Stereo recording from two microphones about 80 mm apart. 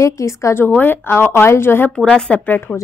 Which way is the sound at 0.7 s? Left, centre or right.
Left.